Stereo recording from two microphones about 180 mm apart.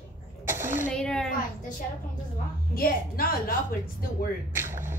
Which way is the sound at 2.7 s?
55° left (ahead or behind).